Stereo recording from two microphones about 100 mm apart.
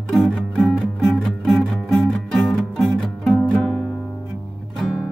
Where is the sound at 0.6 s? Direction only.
Centre (ahead or behind).